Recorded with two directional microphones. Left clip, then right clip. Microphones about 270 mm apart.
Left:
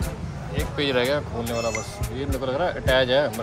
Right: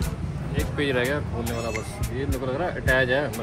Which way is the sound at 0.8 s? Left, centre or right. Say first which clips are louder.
Left 2 dB; left.